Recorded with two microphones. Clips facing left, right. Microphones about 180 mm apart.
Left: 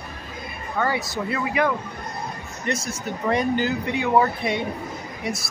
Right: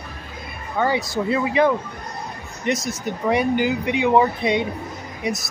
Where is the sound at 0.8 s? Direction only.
20° right (ahead or behind).